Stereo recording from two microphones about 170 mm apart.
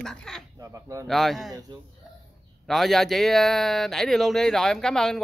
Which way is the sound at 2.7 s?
Centre (ahead or behind).